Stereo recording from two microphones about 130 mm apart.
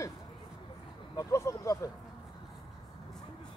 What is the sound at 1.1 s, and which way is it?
Speech, 25° left (ahead or behind).